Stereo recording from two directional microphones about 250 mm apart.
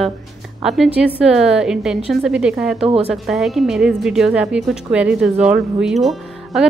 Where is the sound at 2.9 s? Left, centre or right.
Right.